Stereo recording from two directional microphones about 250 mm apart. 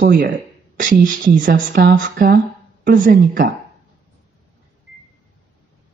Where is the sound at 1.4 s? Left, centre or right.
Right.